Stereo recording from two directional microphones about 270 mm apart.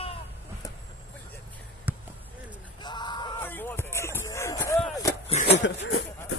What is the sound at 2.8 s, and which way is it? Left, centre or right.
Music, centre.